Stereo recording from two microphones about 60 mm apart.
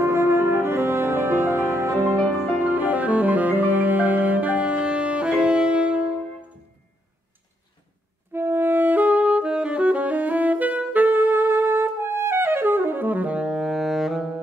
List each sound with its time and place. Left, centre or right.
0.0 s music: right
2.2 s music: left
2.6 s music: right
8.3 s saxophone: right; by 14.3 s centre